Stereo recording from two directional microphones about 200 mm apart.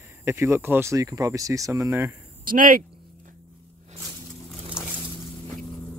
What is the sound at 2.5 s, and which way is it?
Speech, 45° right (ahead or behind).